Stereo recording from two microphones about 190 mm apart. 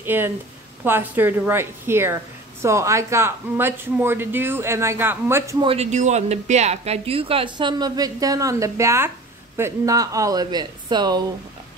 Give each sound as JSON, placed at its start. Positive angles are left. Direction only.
{"t": 0.0, "sound": "speech", "side_deg": -10}
{"t": 5.6, "sound": "speech", "side_deg": -30}